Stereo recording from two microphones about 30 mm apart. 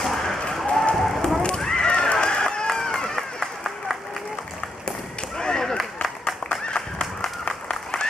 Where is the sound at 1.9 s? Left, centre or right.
Left.